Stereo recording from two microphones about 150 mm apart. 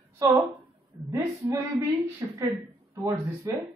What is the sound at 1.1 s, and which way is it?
A woman's voice, 20° right (ahead or behind).